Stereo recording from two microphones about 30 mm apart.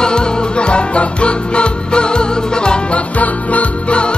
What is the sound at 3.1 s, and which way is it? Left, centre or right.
Music, left.